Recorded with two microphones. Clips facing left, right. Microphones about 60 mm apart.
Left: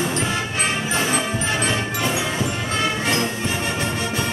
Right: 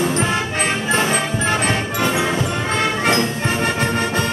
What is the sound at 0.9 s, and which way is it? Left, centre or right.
Music, right.